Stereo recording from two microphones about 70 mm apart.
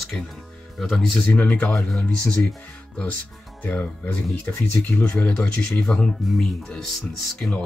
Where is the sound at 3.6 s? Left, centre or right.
Left.